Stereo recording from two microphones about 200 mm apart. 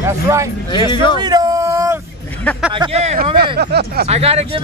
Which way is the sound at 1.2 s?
20° right (ahead or behind).